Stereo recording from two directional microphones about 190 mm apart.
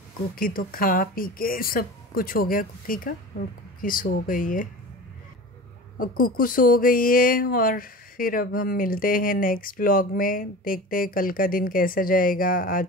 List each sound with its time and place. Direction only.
0.4 s speech: 50° left (ahead or behind)
5.9 s speech: 45° left (ahead or behind)